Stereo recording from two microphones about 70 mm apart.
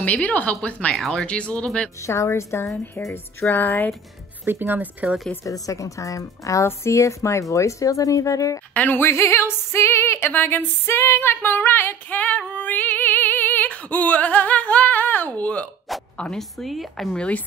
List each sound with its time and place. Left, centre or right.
0.0 s speech: left
2.0 s a woman's voice: left
4.5 s speech: right
5.4 s speech: left
8.7 s a sound: left
16.2 s a woman's voice: centre
17.1 s speech: centre